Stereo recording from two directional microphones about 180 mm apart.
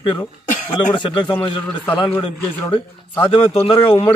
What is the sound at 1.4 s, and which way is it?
A man's voice, 10° left (ahead or behind).